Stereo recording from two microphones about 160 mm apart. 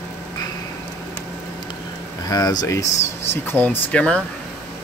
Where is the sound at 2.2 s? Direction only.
25° left (ahead or behind).